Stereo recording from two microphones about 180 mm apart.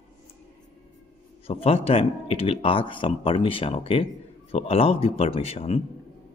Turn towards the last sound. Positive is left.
turn(degrees=35)  # may be behind; listen again after turning